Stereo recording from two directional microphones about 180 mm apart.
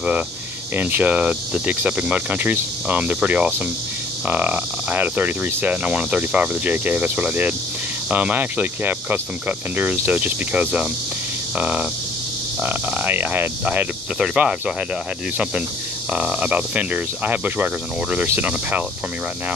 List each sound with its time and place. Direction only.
0.7 s cricket: 10° right (ahead or behind)
11.5 s frog: 5° right (ahead or behind)
12.6 s cricket: 10° right (ahead or behind)
16.1 s cricket: 5° right (ahead or behind)